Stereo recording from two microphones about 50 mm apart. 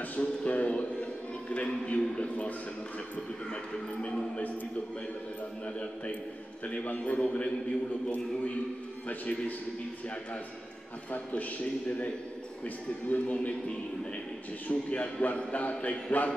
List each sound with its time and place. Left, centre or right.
0.2 s speech: left
6.7 s speech: left
12.6 s a man's voice: left
14.7 s a man's voice: left